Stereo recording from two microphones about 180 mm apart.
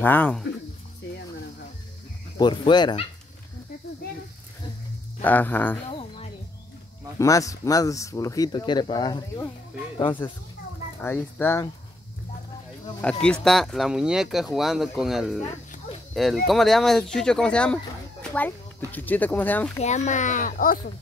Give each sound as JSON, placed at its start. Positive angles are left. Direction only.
{"t": 0.0, "sound": "speech", "side_deg": 10}
{"t": 2.3, "sound": "speech", "side_deg": 25}
{"t": 5.2, "sound": "speech", "side_deg": 10}
{"t": 5.9, "sound": "a sound", "side_deg": 35}
{"t": 7.2, "sound": "speech", "side_deg": 20}
{"t": 11.0, "sound": "speech", "side_deg": 10}
{"t": 13.2, "sound": "speech", "side_deg": 5}
{"t": 16.4, "sound": "speech", "side_deg": 0}
{"t": 19.8, "sound": "speech", "side_deg": 40}